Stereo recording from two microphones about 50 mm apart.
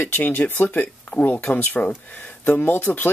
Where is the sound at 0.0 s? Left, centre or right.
Left.